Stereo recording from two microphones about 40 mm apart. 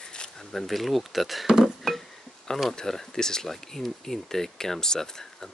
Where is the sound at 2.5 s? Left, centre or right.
Centre.